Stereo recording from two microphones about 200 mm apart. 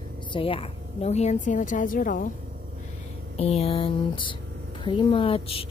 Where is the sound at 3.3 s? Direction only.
30° left (ahead or behind).